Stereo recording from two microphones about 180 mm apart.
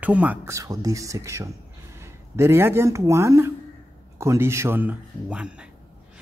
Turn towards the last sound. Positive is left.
turn(degrees=-5)  # may be behind; listen again after turning